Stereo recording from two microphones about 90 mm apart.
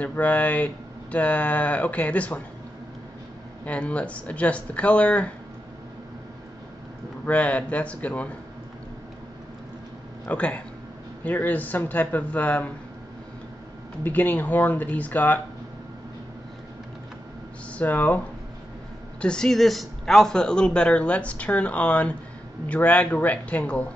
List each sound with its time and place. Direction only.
0.0 s speech: 15° left (ahead or behind)
3.6 s speech: 15° left (ahead or behind)
7.2 s speech: 15° left (ahead or behind)
10.2 s speech: 15° left (ahead or behind)
14.0 s speech: 20° left (ahead or behind)
17.7 s speech: 15° left (ahead or behind)
19.2 s speech: 5° left (ahead or behind)